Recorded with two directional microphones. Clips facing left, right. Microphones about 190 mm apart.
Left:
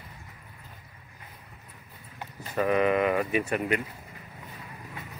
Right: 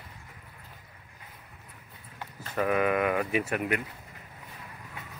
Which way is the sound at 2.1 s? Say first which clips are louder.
Left 2 dB; 10° left (ahead or behind).